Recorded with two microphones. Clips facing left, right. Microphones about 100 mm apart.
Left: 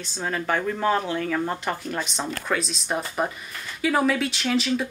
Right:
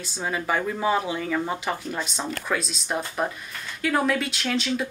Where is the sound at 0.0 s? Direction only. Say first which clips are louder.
Even; 5° right (ahead or behind).